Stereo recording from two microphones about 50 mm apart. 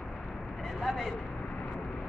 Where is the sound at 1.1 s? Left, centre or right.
Left.